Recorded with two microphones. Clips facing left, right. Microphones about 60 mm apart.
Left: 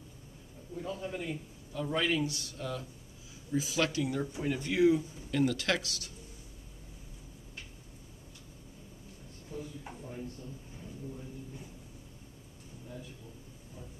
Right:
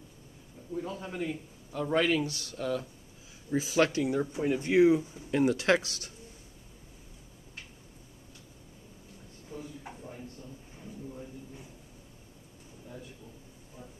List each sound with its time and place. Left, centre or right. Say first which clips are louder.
0.7 s a man's voice: right 2 dB; centre
1.7 s a man's voice: right 4 dB; right
3.5 s speech: right 5 dB; right
4.2 s speech: right 4 dB; centre
9.5 s speech: even; centre